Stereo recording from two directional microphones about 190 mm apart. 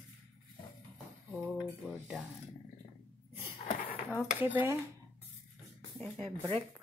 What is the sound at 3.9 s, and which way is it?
Dishes, 5° right (ahead or behind).